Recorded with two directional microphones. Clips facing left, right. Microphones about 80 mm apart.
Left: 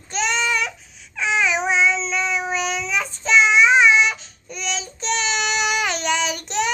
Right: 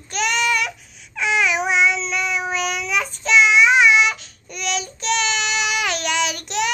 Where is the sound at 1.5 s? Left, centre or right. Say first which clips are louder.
Right 1 dB; centre.